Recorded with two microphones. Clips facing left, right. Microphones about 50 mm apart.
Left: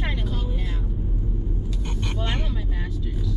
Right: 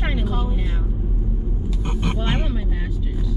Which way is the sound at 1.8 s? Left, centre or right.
Centre.